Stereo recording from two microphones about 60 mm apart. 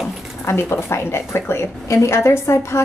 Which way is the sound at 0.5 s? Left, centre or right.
Left.